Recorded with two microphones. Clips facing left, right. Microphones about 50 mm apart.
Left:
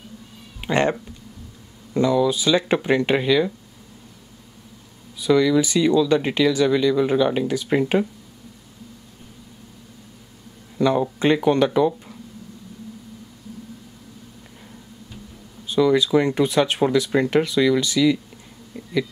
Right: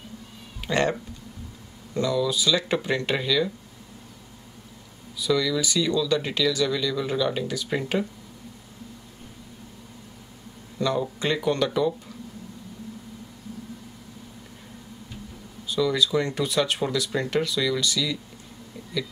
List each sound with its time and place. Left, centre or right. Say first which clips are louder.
0.6 s speech: left 4 dB; left
2.0 s speech: left 6 dB; left
5.1 s speech: left 7 dB; left
10.8 s speech: left 6 dB; left
15.6 s speech: left 6 dB; left